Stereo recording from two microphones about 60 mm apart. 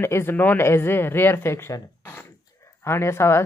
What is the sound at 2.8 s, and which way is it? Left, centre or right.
Speech, left.